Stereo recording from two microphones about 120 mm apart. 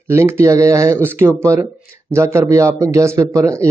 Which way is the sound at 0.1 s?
20° right (ahead or behind).